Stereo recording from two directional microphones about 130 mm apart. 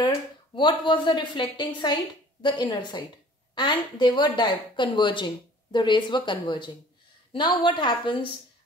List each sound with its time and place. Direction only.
0.0 s a woman's voice: 35° left (ahead or behind)